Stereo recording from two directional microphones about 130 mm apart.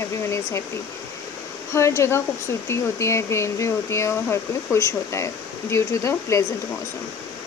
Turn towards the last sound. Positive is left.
turn(degrees=25)  # may be behind; listen again after turning